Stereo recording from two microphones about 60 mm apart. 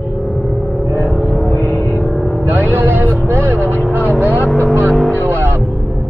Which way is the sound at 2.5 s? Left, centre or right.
Right.